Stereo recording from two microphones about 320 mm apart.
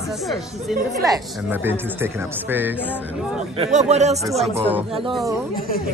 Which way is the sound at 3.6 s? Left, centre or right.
Right.